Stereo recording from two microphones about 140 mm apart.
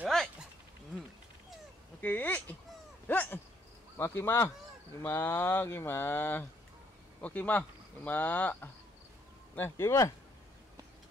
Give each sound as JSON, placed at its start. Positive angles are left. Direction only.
{"t": 2.0, "sound": "speech", "side_deg": 10}